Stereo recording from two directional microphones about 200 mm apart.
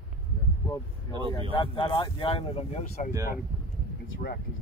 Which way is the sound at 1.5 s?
25° left (ahead or behind).